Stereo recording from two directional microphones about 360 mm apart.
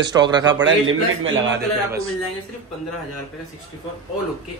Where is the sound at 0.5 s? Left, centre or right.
Right.